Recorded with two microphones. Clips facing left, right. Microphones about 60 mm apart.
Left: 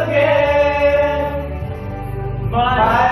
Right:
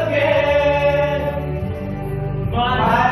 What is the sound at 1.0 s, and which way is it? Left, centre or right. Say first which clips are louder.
Chant: left 3 dB; centre.